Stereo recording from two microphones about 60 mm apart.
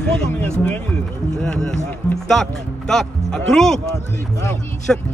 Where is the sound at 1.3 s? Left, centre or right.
Centre.